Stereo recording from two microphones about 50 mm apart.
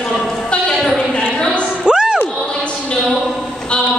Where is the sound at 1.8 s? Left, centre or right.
Centre.